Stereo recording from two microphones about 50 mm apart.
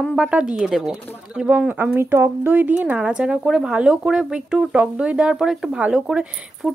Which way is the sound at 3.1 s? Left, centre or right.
Centre.